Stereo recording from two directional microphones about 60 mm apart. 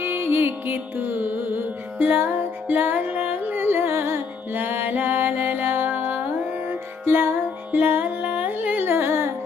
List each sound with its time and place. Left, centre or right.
0.0 s music: right